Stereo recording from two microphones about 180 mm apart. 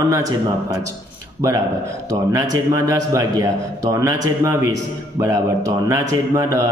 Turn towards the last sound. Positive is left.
turn(degrees=-20)  # may be behind; listen again after turning